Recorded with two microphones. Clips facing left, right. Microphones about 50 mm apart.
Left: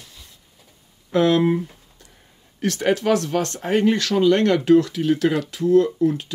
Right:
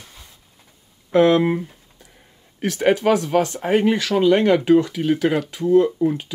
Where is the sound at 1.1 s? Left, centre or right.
Centre.